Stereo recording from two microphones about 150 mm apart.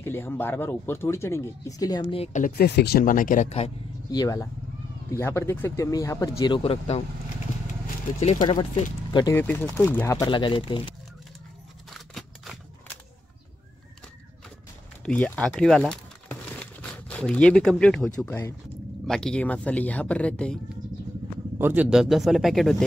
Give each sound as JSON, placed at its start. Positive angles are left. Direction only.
{"t": 0.0, "sound": "speech", "side_deg": 15}
{"t": 2.1, "sound": "speech", "side_deg": 45}
{"t": 2.4, "sound": "speech", "side_deg": 90}
{"t": 4.1, "sound": "speech", "side_deg": 25}
{"t": 8.5, "sound": "speech", "side_deg": 30}
{"t": 9.3, "sound": "speech", "side_deg": 15}
{"t": 10.3, "sound": "speech", "side_deg": 35}
{"t": 11.9, "sound": "a sound", "side_deg": 0}
{"t": 15.0, "sound": "speech", "side_deg": 10}
{"t": 21.5, "sound": "speech", "side_deg": -15}
{"t": 21.8, "sound": "speech", "side_deg": 0}